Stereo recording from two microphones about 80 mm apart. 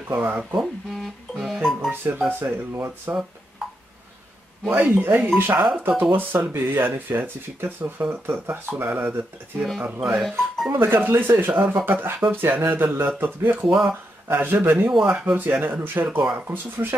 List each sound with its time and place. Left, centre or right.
0.1 s speech: right
0.6 s speech: centre
1.9 s speech: right
4.6 s speech: right
9.6 s speech: centre
10.7 s speech: right
13.7 s speech: centre
14.2 s speech: right
14.9 s speech: centre
15.6 s speech: right